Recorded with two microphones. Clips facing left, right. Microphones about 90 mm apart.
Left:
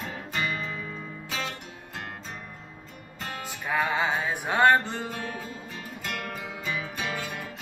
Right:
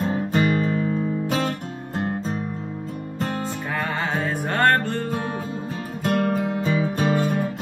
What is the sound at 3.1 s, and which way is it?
Music, 40° right (ahead or behind).